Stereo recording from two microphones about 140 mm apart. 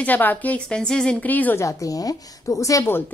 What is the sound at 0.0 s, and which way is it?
A woman's voice, 10° left (ahead or behind).